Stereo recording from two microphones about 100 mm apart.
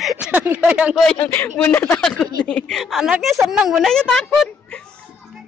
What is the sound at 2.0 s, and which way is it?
Speech, 5° left (ahead or behind).